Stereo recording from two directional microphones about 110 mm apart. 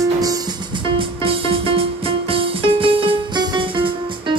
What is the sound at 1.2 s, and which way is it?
Music, 55° right (ahead or behind).